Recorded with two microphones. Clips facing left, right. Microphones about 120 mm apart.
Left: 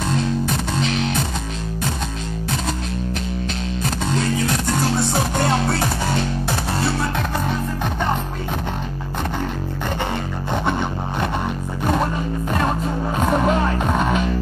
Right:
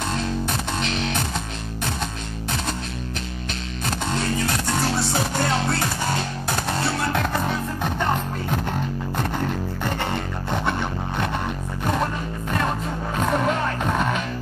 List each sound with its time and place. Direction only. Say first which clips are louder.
13.3 s music: left 4 dB; 20° left (ahead or behind)
13.9 s music: left 4 dB; 5° left (ahead or behind)